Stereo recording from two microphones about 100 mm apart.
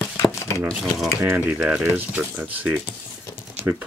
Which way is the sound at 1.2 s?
15° right (ahead or behind).